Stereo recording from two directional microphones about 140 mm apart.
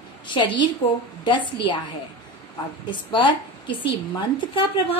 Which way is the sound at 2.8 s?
35° left (ahead or behind).